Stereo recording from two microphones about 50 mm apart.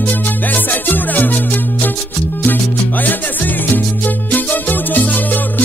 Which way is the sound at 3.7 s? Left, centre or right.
Left.